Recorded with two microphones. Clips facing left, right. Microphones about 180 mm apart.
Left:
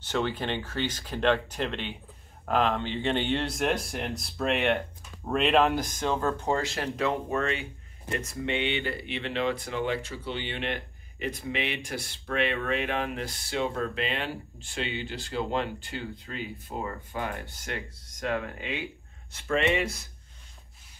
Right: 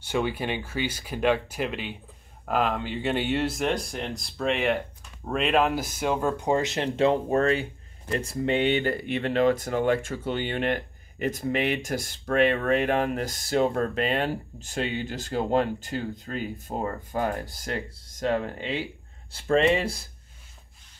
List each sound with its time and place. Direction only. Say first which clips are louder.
0.0 s speech: right 2 dB; 10° right (ahead or behind); by 20.1 s 30° right (ahead or behind)